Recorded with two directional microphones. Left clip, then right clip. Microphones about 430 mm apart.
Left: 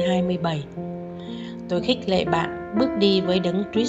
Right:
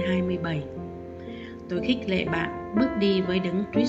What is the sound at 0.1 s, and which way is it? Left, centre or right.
Speech, centre.